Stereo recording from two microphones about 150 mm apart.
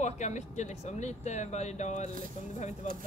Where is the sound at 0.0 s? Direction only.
50° left (ahead or behind).